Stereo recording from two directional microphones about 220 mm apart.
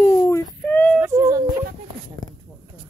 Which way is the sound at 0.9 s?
10° right (ahead or behind).